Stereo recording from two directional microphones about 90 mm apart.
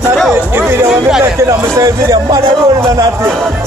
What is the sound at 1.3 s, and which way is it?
Speech, 35° right (ahead or behind).